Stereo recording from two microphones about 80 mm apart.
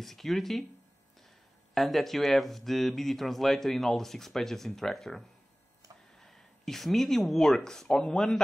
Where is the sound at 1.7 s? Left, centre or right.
Centre.